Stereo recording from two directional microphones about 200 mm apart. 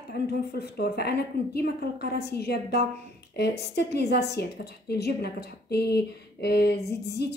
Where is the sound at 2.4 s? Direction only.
55° left (ahead or behind).